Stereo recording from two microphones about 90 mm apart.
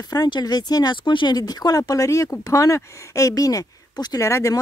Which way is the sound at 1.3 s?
45° left (ahead or behind).